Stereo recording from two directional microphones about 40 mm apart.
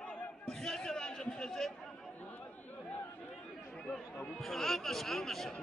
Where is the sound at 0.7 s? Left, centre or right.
Centre.